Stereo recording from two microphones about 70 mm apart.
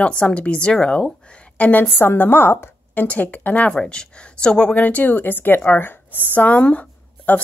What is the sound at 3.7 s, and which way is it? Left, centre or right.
A woman's voice, centre.